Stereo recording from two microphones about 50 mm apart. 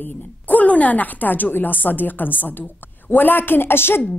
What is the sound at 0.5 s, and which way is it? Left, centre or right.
A woman's voice, left.